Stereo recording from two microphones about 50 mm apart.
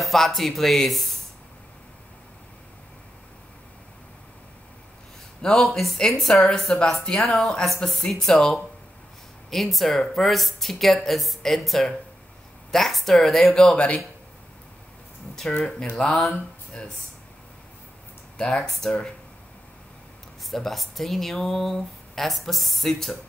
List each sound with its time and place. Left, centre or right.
0.0 s speech: centre
5.4 s speech: centre
13.6 s speech: centre
15.4 s speech: centre
18.4 s speech: left
20.5 s speech: centre